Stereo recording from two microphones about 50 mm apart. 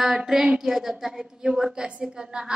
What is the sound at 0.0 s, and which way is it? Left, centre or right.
A woman's voice, centre.